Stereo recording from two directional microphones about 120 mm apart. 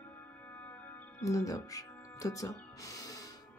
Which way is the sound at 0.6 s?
15° left (ahead or behind).